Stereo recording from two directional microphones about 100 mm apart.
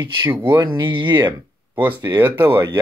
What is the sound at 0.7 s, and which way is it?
Speech, 55° right (ahead or behind).